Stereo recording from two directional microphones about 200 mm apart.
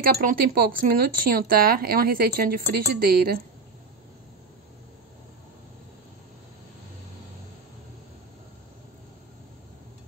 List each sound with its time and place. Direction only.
0.0 s speech: 45° right (ahead or behind)